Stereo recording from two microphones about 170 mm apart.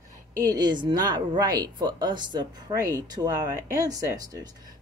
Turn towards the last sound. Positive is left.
turn(degrees=-20)  # may be behind; listen again after turning